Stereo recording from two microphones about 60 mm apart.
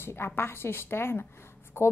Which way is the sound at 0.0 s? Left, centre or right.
Left.